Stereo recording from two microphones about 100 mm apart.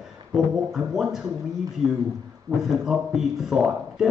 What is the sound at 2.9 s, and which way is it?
A man's voice, 5° right (ahead or behind).